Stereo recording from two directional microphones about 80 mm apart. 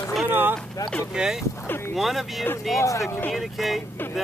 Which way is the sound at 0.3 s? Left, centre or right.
Right.